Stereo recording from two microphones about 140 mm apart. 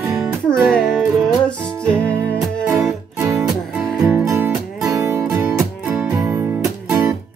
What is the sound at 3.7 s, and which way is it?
Music, 10° right (ahead or behind).